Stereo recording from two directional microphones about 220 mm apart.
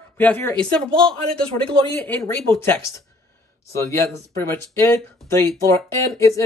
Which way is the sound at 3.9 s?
10° left (ahead or behind).